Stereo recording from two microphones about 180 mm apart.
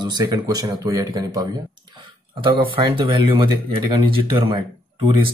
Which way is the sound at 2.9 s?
25° right (ahead or behind).